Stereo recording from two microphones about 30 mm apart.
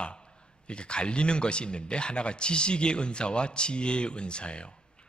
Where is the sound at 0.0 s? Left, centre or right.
Left.